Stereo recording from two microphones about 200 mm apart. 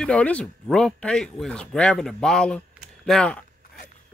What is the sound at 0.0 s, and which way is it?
Speech, 5° left (ahead or behind).